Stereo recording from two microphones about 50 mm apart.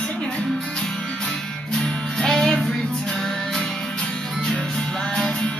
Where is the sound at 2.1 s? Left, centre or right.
Centre.